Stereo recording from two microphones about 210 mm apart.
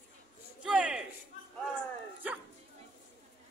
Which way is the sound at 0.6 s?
5° right (ahead or behind).